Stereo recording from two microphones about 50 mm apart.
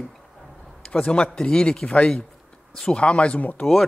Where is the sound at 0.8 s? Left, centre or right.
Centre.